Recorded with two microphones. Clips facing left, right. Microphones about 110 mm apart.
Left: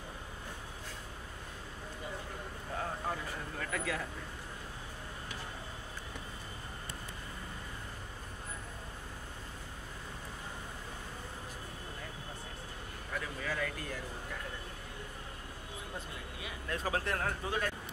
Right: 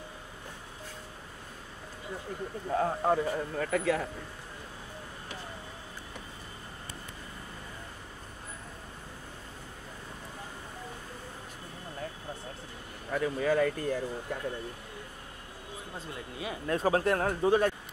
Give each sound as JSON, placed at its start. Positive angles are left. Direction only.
{"t": 2.8, "sound": "speech", "side_deg": -40}
{"t": 13.1, "sound": "speech", "side_deg": -40}
{"t": 16.4, "sound": "speech", "side_deg": -35}